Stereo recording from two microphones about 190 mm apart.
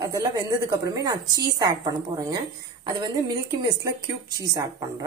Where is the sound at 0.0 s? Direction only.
20° right (ahead or behind).